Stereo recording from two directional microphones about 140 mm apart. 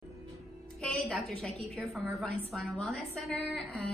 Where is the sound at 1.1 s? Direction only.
5° left (ahead or behind).